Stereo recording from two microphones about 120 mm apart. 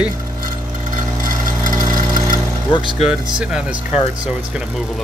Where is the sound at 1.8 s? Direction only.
90° right.